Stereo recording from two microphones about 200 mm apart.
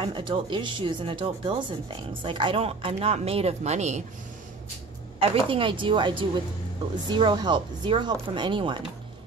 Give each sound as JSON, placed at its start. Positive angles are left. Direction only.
{"t": 0.0, "sound": "speech", "side_deg": -25}
{"t": 5.2, "sound": "speech", "side_deg": -25}